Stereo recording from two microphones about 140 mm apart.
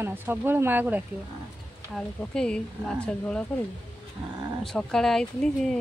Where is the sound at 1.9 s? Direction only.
5° left (ahead or behind).